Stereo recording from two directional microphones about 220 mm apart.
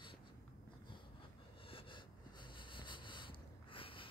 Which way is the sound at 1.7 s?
25° left (ahead or behind).